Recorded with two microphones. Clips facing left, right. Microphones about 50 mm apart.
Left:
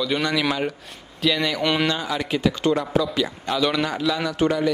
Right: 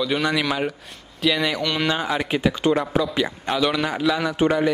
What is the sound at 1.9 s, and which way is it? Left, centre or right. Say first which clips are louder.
Speech: right 2 dB; right.